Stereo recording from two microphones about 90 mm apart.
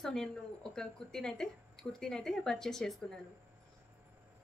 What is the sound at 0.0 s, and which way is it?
Speech, 5° left (ahead or behind).